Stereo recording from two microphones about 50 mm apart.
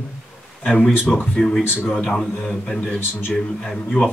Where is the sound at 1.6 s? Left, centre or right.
Left.